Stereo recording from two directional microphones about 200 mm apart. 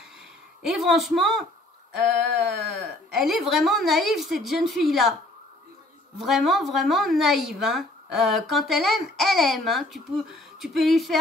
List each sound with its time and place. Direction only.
0.6 s speech: centre (ahead or behind)
6.1 s speech: centre (ahead or behind)